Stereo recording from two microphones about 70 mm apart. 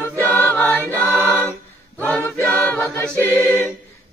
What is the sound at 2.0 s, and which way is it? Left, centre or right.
Choir, centre.